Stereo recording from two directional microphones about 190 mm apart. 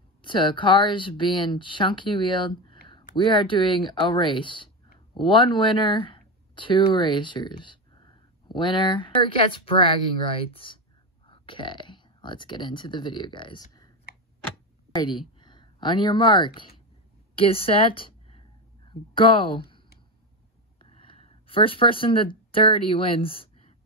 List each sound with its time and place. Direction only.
0.2 s speech: 25° left (ahead or behind)
15.0 s a woman's voice: 25° left (ahead or behind)
20.8 s speech: 30° left (ahead or behind)